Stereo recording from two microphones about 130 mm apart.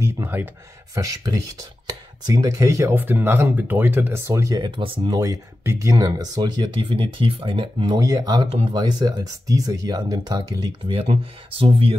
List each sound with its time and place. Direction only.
0.0 s speech: 15° right (ahead or behind)
4.6 s speech: 40° right (ahead or behind)
5.1 s speech: 25° right (ahead or behind)
8.5 s speech: 45° right (ahead or behind)
8.7 s speech: 30° right (ahead or behind); by 12.0 s 45° right (ahead or behind)